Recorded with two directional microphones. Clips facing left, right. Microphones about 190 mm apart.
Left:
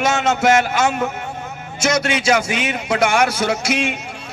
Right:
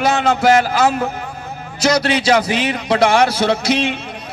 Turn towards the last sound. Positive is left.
turn(degrees=-30)  # may be behind; listen again after turning